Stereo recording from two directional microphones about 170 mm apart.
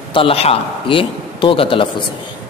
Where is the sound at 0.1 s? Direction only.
35° left (ahead or behind).